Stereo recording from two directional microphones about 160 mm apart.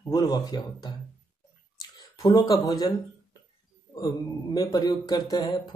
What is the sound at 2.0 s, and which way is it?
Speech, 25° left (ahead or behind).